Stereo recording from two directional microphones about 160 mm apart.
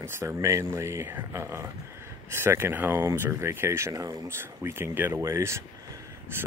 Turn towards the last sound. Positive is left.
turn(degrees=-15)  # may be behind; listen again after turning